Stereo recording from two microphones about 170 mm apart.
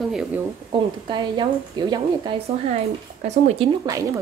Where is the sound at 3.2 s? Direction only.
40° right (ahead or behind).